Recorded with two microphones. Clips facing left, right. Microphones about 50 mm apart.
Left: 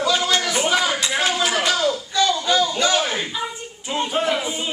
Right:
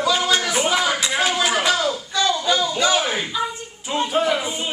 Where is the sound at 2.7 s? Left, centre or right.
Centre.